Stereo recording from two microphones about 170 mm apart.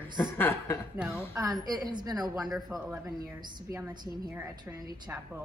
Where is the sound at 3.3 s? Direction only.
25° right (ahead or behind).